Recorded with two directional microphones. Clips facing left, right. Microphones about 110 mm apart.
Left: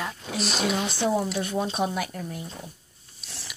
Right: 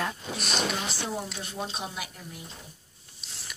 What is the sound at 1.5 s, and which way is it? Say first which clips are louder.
Speech: left 8 dB; 55° left (ahead or behind).